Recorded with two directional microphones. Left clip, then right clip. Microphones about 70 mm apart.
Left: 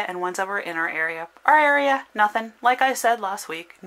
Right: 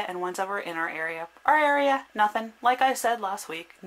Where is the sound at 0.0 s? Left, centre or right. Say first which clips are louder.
Left 4 dB; left.